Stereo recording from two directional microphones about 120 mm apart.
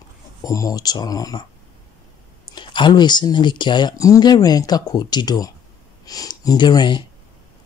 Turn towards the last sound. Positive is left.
turn(degrees=40)  # may be behind; listen again after turning